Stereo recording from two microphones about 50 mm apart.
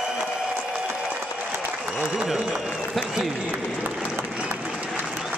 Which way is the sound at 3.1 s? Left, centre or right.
Centre.